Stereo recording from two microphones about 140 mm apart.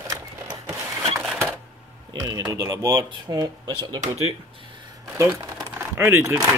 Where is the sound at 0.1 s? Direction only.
30° right (ahead or behind).